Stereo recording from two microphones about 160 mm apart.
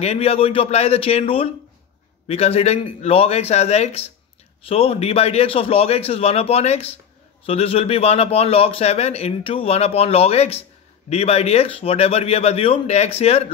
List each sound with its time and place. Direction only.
0.0 s a man's voice: 40° left (ahead or behind)